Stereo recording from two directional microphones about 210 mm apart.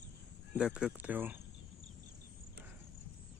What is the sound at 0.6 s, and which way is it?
Speech, 5° right (ahead or behind).